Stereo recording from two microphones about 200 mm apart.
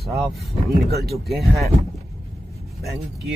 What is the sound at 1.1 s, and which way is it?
Speech, centre (ahead or behind).